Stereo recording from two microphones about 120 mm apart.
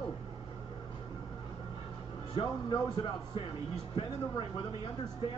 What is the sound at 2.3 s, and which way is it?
Speech, 40° left (ahead or behind).